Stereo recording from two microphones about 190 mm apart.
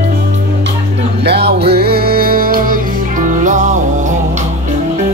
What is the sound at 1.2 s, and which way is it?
Music, 60° right (ahead or behind).